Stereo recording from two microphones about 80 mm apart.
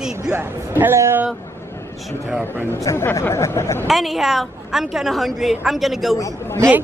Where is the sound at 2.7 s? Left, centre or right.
Left.